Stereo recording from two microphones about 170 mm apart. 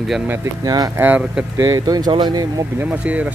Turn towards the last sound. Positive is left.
turn(degrees=-10)  # may be behind; listen again after turning